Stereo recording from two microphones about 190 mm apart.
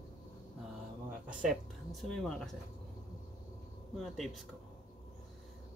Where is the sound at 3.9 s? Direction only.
Centre (ahead or behind).